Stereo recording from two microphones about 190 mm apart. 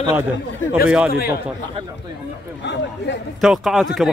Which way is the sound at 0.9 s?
5° right (ahead or behind).